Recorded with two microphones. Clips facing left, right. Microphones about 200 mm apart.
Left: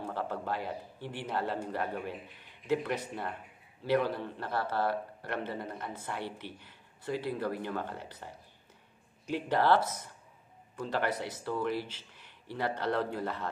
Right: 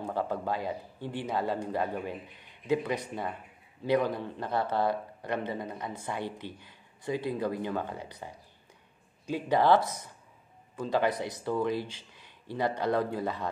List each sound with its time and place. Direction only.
0.0 s speech: 15° right (ahead or behind)